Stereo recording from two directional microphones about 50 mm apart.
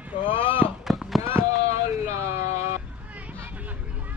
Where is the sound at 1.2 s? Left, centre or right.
Right.